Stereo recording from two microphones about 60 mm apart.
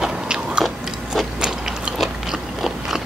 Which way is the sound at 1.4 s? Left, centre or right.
Centre.